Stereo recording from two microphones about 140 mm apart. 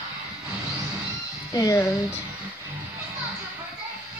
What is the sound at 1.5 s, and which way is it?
Speech, 25° left (ahead or behind).